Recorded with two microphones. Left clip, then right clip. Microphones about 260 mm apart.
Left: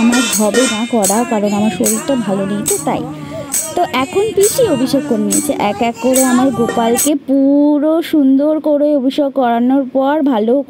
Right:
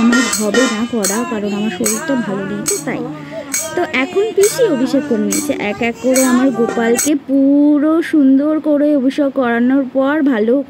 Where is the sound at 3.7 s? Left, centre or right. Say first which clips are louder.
Left 2 dB; centre.